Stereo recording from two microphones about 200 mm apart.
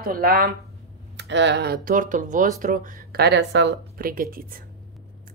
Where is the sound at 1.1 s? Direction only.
60° right (ahead or behind).